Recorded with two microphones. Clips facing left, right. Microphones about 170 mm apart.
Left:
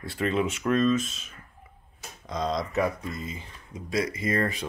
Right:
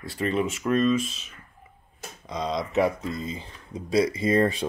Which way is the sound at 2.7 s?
30° right (ahead or behind).